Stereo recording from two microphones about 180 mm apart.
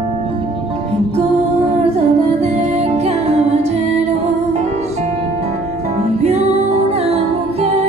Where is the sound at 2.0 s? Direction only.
40° right (ahead or behind).